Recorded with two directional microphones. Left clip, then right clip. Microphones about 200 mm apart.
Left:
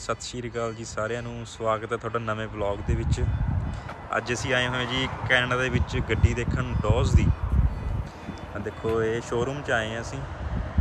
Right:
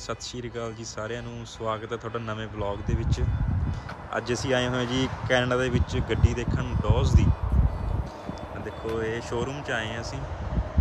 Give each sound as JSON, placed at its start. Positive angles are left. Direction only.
{"t": 0.1, "sound": "speech", "side_deg": -10}
{"t": 8.8, "sound": "speech", "side_deg": -5}